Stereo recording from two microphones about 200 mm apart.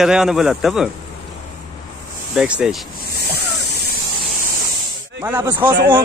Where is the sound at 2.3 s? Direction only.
5° right (ahead or behind).